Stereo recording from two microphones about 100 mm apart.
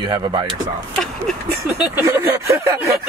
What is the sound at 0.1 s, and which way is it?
Speech, 45° right (ahead or behind).